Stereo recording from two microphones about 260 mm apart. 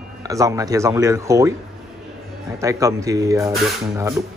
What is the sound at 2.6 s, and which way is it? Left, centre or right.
Speech, centre.